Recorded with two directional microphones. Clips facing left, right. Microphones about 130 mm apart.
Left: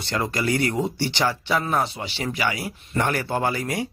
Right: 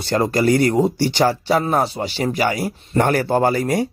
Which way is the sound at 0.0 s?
40° right (ahead or behind).